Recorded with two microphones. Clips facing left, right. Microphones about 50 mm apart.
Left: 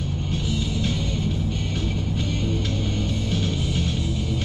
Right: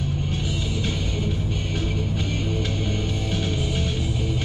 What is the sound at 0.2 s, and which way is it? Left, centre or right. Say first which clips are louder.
Music: left 1 dB; centre.